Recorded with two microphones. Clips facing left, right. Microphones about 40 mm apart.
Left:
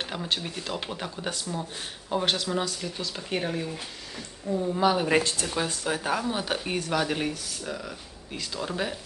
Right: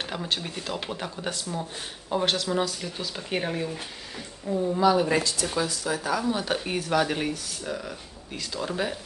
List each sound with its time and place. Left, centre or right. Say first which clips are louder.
0.1 s speech: even; centre
4.7 s speech: right 3 dB; centre
5.1 s speech: left 1 dB; left
6.4 s speech: right 1 dB; centre